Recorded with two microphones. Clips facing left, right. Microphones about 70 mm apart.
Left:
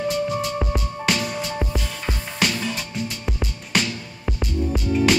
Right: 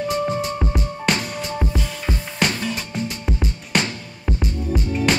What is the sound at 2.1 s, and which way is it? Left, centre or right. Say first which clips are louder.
Music: right 2 dB; right.